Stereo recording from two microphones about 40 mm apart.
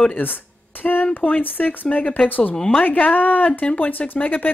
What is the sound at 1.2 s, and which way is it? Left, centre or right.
Speech, left.